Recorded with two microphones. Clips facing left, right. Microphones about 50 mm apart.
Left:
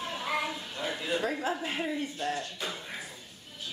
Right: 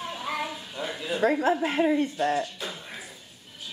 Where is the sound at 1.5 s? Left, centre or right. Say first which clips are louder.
Right 9 dB; right.